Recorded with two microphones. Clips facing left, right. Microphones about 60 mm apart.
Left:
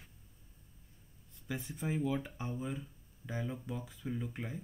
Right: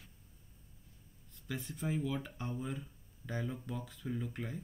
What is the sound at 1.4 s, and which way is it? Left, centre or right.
Speech, centre.